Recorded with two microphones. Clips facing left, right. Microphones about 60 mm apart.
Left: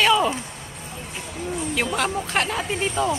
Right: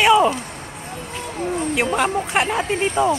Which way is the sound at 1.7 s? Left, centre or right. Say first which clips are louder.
Right 4 dB; centre.